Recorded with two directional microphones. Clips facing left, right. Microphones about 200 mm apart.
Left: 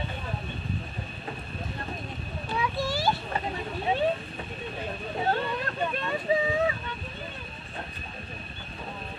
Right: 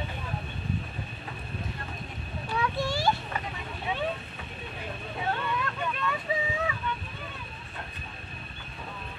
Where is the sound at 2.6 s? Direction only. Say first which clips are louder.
Even; 5° left (ahead or behind).